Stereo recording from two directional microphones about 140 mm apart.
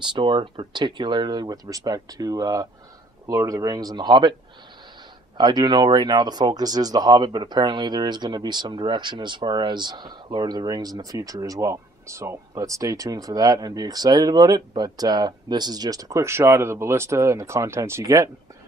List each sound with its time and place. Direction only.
0.0 s speech: 35° right (ahead or behind)
5.4 s speech: 30° right (ahead or behind)